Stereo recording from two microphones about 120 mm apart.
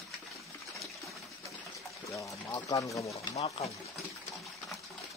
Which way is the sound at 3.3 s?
60° left (ahead or behind).